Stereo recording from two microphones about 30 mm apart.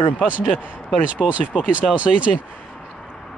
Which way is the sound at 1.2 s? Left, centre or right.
Centre.